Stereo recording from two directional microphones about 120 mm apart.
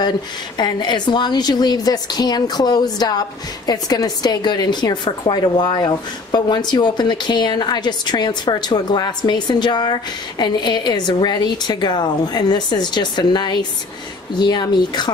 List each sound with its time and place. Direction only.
0.6 s a woman's voice: 35° left (ahead or behind)